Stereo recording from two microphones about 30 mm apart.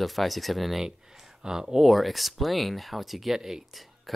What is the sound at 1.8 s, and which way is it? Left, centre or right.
Speech, centre.